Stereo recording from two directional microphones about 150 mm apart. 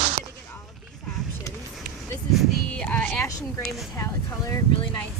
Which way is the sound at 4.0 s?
25° left (ahead or behind).